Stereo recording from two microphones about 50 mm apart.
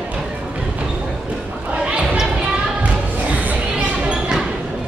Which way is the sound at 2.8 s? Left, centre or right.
Right.